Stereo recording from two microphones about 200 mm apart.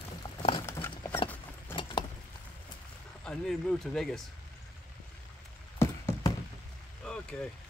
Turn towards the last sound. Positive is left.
turn(degrees=5)  # may be behind; listen again after turning